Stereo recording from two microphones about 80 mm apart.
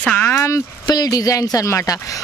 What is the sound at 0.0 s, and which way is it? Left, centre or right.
Speech, centre.